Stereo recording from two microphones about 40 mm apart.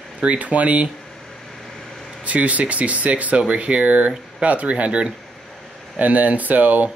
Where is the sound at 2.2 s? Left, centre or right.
Right.